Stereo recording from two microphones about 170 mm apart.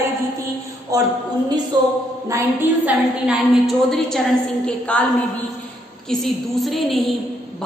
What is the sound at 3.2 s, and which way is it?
A woman's voice, centre (ahead or behind).